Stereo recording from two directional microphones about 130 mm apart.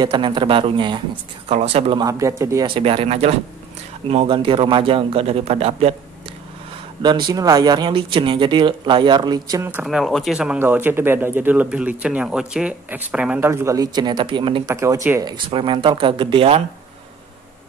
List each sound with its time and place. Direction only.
0.0 s speech: 40° right (ahead or behind)
1.5 s speech: 55° right (ahead or behind)
2.0 s speech: 25° right (ahead or behind)
2.6 s speech: 45° right (ahead or behind)
7.0 s speech: 35° right (ahead or behind)
9.6 s speech: 15° right (ahead or behind)
9.8 s speech: centre (ahead or behind)
13.4 s speech: 20° right (ahead or behind); by 14.8 s 40° right (ahead or behind)
14.8 s speech: 20° right (ahead or behind)
15.3 s speech: 40° right (ahead or behind)